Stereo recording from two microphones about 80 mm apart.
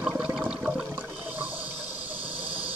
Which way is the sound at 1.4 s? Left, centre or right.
Centre.